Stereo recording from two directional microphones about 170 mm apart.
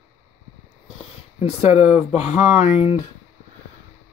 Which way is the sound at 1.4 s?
40° left (ahead or behind).